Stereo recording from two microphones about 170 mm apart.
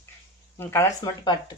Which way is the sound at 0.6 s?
15° left (ahead or behind).